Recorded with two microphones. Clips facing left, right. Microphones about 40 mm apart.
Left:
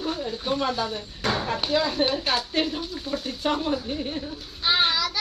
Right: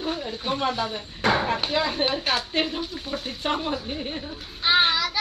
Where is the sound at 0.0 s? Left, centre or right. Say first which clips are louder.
Even; right.